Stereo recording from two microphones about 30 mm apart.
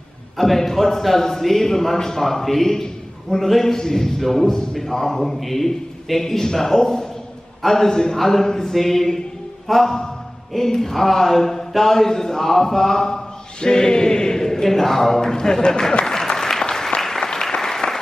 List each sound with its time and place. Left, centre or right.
0.4 s a man's voice: centre
9.7 s mantra: centre
10.5 s speech: centre
16.1 s applause: centre